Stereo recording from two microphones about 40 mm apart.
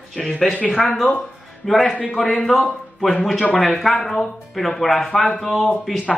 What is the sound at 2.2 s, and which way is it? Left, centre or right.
Speech, centre.